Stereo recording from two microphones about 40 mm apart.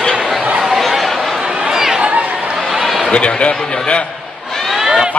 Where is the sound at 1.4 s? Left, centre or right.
Right.